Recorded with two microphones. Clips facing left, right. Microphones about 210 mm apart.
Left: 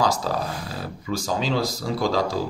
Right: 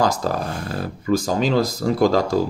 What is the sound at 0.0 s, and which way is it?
Speech, 50° right (ahead or behind).